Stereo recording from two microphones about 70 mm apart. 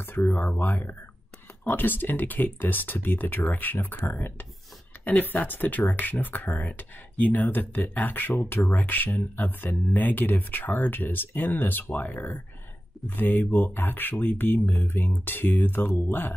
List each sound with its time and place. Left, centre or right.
0.3 s speech: left